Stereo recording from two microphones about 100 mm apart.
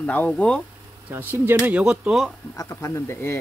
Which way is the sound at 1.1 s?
20° right (ahead or behind).